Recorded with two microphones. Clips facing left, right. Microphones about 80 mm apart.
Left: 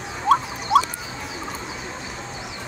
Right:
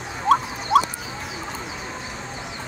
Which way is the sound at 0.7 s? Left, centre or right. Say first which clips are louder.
Even; right.